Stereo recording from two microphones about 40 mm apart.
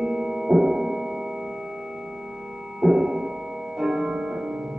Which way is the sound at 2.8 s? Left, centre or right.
Centre.